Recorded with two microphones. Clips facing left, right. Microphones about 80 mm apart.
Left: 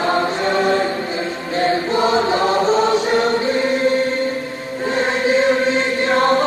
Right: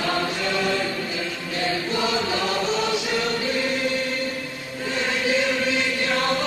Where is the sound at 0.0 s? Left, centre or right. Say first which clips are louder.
Left 7 dB; left.